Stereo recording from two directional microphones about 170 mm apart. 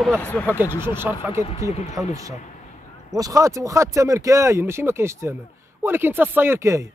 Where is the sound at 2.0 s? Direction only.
20° right (ahead or behind).